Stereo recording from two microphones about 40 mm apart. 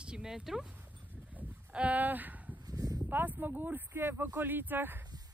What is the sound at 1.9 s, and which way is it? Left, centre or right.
Speech, right.